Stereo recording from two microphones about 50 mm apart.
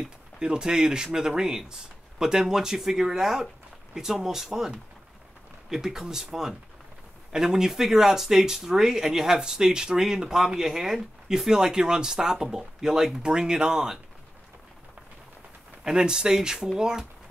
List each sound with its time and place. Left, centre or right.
0.0 s speech: centre
15.8 s speech: centre